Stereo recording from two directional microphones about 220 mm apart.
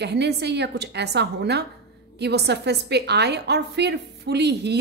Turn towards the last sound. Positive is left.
turn(degrees=-50)  # may be behind; listen again after turning